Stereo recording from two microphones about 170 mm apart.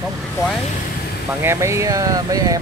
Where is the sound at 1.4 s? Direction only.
15° right (ahead or behind).